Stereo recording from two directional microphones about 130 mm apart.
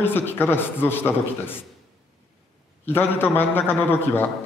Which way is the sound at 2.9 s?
15° left (ahead or behind).